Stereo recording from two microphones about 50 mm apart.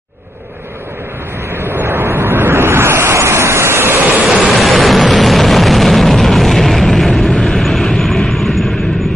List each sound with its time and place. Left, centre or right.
1.5 s waves: right
3.1 s a sound: right
4.6 s vehicle: centre